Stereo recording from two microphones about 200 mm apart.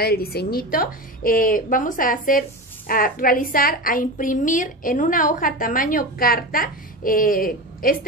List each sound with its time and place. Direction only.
0.0 s a woman's voice: 50° left (ahead or behind)